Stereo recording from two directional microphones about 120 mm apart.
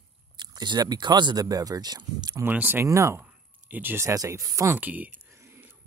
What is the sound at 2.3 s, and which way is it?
Speech, 15° right (ahead or behind).